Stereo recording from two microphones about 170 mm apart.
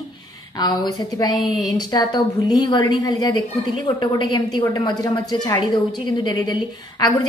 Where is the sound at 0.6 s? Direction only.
25° left (ahead or behind).